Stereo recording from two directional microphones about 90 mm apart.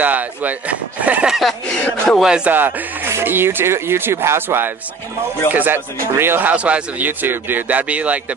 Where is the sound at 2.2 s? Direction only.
10° right (ahead or behind).